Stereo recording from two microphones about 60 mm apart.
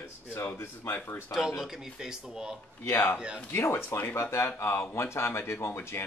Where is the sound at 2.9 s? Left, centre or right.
Left.